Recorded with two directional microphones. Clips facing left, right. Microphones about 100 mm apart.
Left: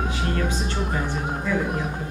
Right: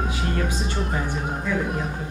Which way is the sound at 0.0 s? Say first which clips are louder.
Even; centre (ahead or behind).